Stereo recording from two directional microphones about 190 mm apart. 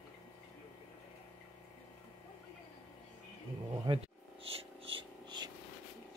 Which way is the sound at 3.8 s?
30° right (ahead or behind).